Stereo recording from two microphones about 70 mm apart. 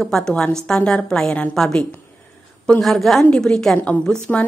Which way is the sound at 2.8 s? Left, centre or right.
Centre.